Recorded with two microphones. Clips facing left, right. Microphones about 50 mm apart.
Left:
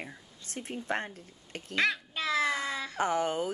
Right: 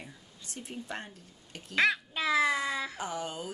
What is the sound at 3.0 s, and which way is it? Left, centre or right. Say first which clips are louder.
Speech: left 7 dB; left.